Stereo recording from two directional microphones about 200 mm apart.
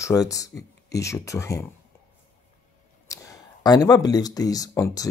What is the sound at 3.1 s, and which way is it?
Speech, 15° left (ahead or behind).